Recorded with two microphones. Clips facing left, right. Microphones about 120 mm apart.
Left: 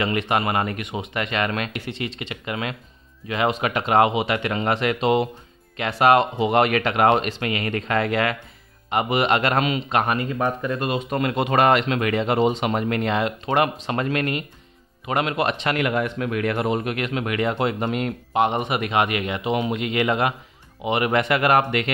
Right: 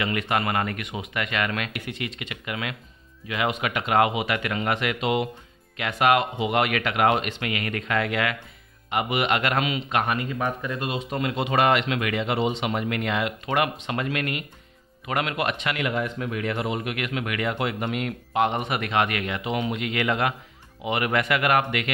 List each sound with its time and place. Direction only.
0.0 s a man's voice: 25° left (ahead or behind)
15.8 s a man's voice: 65° left (ahead or behind); by 21.9 s 35° left (ahead or behind)